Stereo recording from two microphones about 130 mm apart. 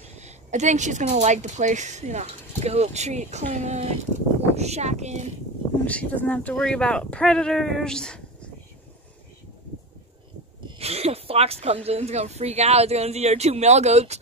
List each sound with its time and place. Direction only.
0.0 s a woman's voice: 60° right (ahead or behind)
5.9 s speech: 10° left (ahead or behind)
10.8 s speech: 50° right (ahead or behind)